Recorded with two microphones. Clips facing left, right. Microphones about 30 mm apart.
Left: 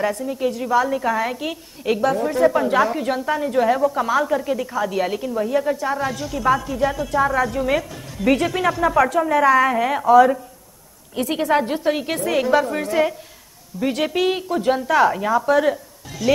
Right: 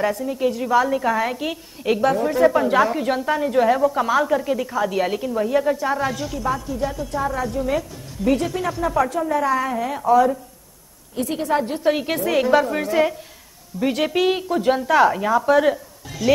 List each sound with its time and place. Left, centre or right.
0.0 s a woman's voice: centre
6.7 s a woman's voice: left
11.2 s speech: left
11.8 s a woman's voice: centre